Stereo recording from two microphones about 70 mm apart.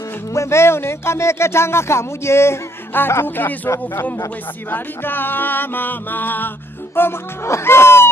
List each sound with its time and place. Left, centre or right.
0.3 s speech: left
4.6 s music: left
7.0 s speech: left